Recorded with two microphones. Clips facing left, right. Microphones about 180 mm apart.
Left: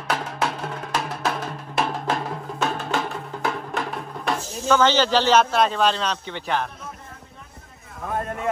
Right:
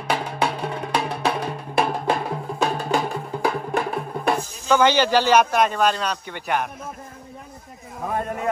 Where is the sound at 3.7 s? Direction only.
55° right (ahead or behind).